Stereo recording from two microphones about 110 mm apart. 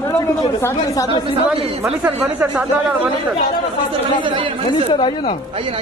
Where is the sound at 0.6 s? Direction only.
25° left (ahead or behind).